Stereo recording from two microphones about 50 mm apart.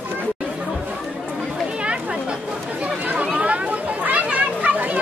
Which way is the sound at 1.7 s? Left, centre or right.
Right.